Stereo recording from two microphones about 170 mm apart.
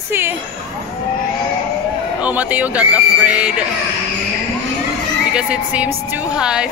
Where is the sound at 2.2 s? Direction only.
10° right (ahead or behind).